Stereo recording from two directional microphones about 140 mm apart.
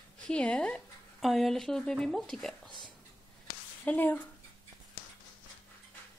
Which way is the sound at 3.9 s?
15° left (ahead or behind).